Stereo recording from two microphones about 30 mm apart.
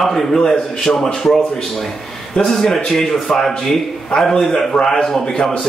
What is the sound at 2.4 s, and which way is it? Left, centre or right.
A man's voice, centre.